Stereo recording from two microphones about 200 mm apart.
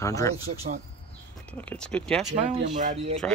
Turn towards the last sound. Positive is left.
turn(degrees=-40)  # may be behind; listen again after turning